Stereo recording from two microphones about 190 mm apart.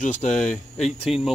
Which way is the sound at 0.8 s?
Centre (ahead or behind).